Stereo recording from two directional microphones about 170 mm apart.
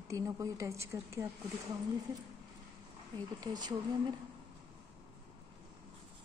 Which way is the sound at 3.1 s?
25° right (ahead or behind).